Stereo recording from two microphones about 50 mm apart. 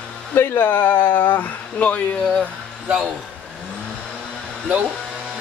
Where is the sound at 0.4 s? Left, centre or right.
Left.